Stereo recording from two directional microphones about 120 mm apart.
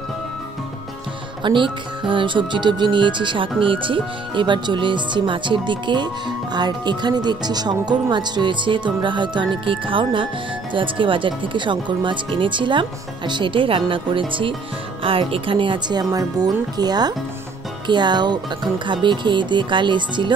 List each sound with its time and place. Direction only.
1.4 s speech: 45° right (ahead or behind)